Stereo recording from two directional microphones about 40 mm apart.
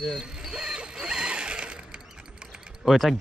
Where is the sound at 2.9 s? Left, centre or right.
Centre.